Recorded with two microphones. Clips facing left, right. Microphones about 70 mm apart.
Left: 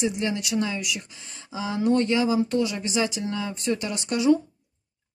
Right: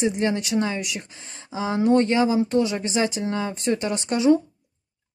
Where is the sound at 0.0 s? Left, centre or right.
Right.